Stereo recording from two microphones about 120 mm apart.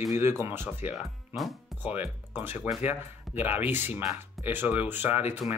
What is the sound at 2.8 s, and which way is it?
Speech, 15° right (ahead or behind).